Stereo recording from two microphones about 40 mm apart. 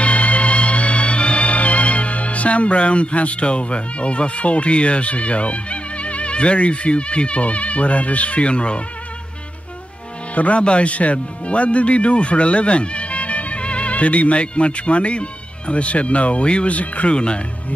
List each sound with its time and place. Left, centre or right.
0.0 s music: left
10.3 s speech: left